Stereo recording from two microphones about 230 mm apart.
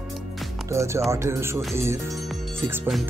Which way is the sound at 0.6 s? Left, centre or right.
Centre.